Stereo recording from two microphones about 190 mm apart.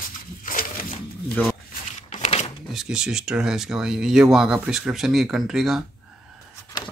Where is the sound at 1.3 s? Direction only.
5° left (ahead or behind).